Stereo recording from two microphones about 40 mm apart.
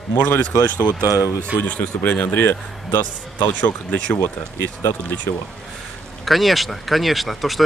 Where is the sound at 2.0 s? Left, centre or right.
Left.